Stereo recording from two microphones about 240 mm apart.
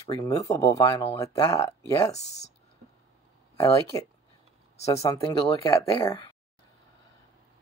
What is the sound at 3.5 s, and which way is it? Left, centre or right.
Speech, centre.